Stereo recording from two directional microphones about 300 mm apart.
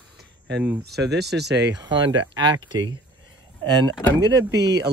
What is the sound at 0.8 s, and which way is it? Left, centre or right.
Speech, right.